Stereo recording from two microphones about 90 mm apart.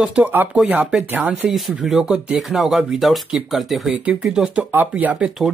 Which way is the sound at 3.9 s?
10° right (ahead or behind).